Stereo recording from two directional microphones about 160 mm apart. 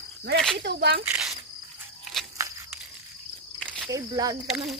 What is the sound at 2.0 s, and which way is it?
Walk, centre (ahead or behind).